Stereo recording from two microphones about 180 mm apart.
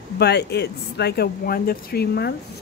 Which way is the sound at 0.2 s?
70° left (ahead or behind).